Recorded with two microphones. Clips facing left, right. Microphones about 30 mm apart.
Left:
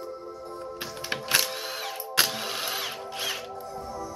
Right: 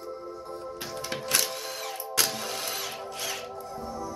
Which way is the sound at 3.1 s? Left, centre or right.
Left.